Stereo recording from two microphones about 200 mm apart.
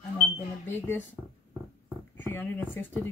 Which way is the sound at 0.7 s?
10° left (ahead or behind).